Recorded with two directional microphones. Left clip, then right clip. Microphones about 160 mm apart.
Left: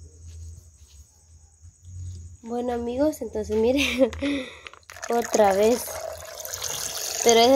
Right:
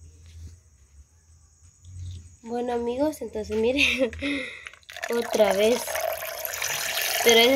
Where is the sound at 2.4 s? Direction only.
10° left (ahead or behind).